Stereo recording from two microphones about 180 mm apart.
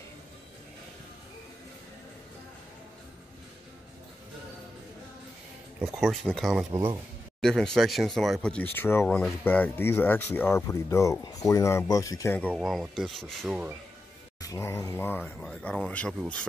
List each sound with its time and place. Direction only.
5.9 s speech: centre (ahead or behind)
6.7 s speech: 15° right (ahead or behind)
7.4 s speech: 5° left (ahead or behind)
12.5 s speech: centre (ahead or behind)
14.4 s speech: 15° left (ahead or behind)